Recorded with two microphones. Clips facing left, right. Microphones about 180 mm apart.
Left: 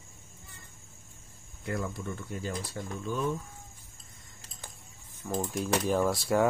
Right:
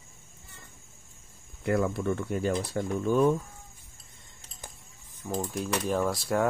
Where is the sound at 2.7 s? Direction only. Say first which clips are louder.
Right 9 dB; 55° right (ahead or behind).